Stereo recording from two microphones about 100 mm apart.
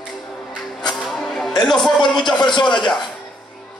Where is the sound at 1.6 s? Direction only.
5° left (ahead or behind).